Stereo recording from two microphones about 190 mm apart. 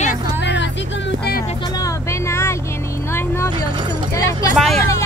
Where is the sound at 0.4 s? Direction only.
65° left (ahead or behind).